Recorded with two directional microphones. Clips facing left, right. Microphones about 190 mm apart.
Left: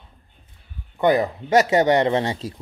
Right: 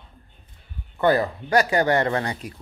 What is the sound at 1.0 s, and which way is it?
Speech, 15° left (ahead or behind).